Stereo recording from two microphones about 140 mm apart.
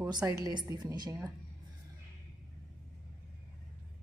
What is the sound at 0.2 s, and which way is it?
Speech, 20° right (ahead or behind).